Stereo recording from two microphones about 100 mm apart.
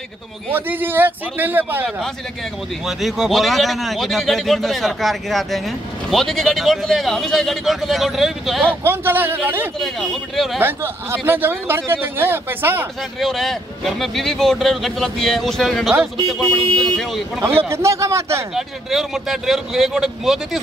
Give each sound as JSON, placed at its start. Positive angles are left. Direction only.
{"t": 0.5, "sound": "speech", "side_deg": -20}
{"t": 2.9, "sound": "speech", "side_deg": 0}
{"t": 8.8, "sound": "speech", "side_deg": -20}
{"t": 9.8, "sound": "speech", "side_deg": 0}
{"t": 10.6, "sound": "speech", "side_deg": -25}
{"t": 13.2, "sound": "speech", "side_deg": 0}
{"t": 17.6, "sound": "speech", "side_deg": -25}
{"t": 18.5, "sound": "speech", "side_deg": -5}